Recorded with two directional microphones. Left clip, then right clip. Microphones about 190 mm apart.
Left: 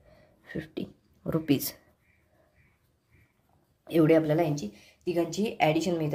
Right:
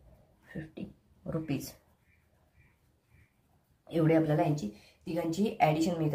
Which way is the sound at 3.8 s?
40° left (ahead or behind).